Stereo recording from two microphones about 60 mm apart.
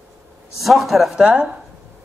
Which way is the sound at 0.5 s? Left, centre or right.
Centre.